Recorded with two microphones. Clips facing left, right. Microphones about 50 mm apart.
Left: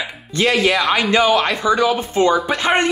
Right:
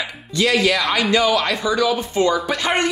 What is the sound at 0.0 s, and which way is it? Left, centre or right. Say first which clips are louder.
Speech: left 2 dB; left.